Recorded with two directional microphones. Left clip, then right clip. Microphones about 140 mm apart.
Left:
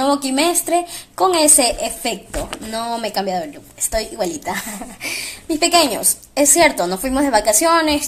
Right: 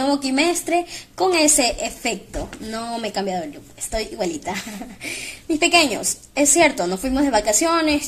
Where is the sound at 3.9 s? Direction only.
45° left (ahead or behind).